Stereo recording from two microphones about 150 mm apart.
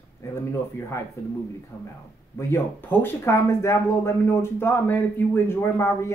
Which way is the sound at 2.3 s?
15° left (ahead or behind).